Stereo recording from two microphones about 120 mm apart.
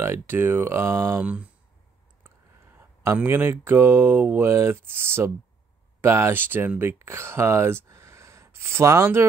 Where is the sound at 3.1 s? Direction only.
20° right (ahead or behind).